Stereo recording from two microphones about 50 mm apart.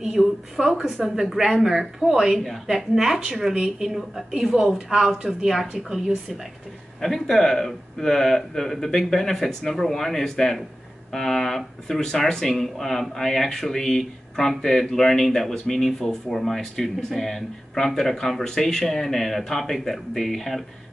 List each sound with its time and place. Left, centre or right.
0.2 s speech: centre
0.6 s a woman's voice: centre
7.0 s speech: centre